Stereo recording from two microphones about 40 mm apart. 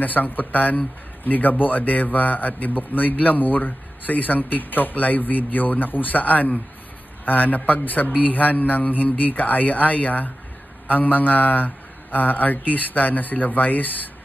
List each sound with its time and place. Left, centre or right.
0.0 s speech: left